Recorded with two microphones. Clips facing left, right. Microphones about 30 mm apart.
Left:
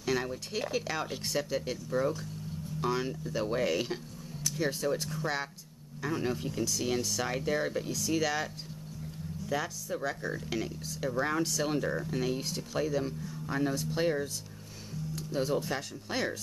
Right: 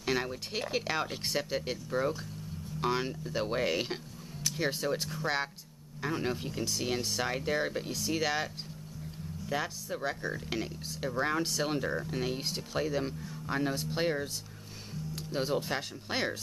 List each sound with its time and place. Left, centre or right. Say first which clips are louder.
0.0 s speech: even; right
7.2 s speech: right 1 dB; centre
9.5 s speech: left 1 dB; centre